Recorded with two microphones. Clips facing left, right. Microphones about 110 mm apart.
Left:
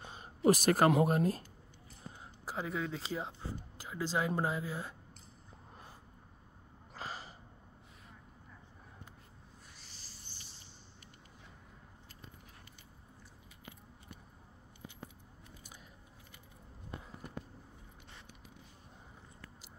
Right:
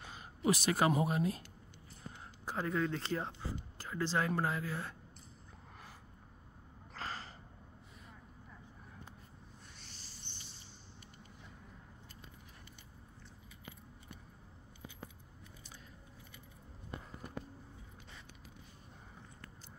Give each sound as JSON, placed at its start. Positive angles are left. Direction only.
{"t": 0.1, "sound": "a sound", "side_deg": 30}
{"t": 1.0, "sound": "speech", "side_deg": 45}
{"t": 2.5, "sound": "speech", "side_deg": 5}
{"t": 6.9, "sound": "gasp", "side_deg": 15}